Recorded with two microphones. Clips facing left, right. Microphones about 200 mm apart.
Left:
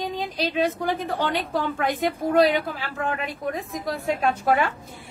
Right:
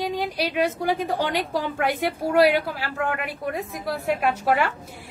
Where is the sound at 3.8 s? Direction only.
5° right (ahead or behind).